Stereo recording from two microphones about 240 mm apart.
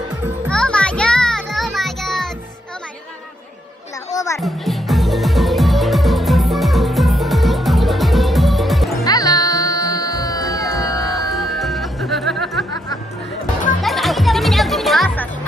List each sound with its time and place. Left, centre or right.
0.5 s music: centre
4.1 s music: centre
4.4 s music: centre
9.0 s music: centre
11.0 s music: centre
13.7 s music: centre